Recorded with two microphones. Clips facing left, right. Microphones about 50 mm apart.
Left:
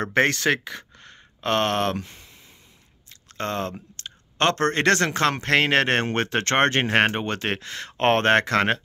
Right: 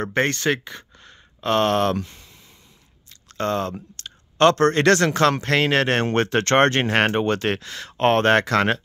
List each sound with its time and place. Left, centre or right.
0.0 s speech: left
0.9 s a sound: left
3.1 s chewing: left
3.9 s speech: left
5.4 s speech: left
6.0 s speech: centre
7.6 s speech: left